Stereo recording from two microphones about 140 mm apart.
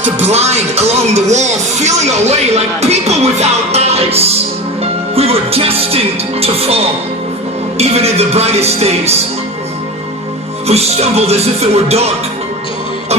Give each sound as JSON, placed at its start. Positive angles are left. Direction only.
{"t": 0.2, "sound": "speech", "side_deg": -50}
{"t": 5.1, "sound": "music", "side_deg": -45}
{"t": 7.8, "sound": "speech", "side_deg": -50}
{"t": 10.7, "sound": "speech", "side_deg": -50}